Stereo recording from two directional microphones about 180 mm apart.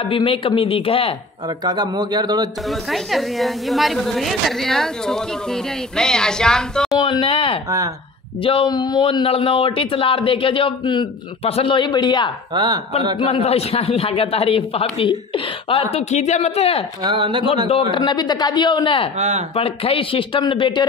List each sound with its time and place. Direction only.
0.0 s a man's voice: 30° left (ahead or behind)
1.6 s a man's voice: 20° right (ahead or behind)
2.7 s a woman's voice: centre (ahead or behind)
7.0 s a man's voice: 30° left (ahead or behind)
12.5 s a man's voice: 25° right (ahead or behind)
13.2 s a man's voice: 30° left (ahead or behind)
17.0 s a man's voice: 25° right (ahead or behind)
17.6 s a man's voice: 30° left (ahead or behind)
19.1 s speech: 35° right (ahead or behind)
19.5 s a man's voice: 30° left (ahead or behind)